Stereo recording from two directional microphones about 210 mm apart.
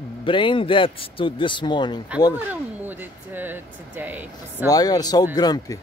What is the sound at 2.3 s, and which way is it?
Speech, 10° right (ahead or behind).